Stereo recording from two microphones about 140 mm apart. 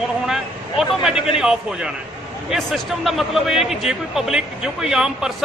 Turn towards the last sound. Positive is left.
turn(degrees=-5)  # may be behind; listen again after turning